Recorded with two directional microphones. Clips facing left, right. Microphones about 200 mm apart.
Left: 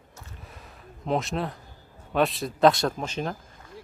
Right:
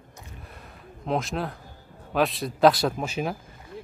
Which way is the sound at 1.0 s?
Centre (ahead or behind).